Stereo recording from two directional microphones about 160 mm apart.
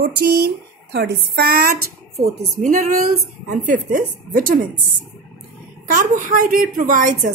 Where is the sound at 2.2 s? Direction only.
50° right (ahead or behind).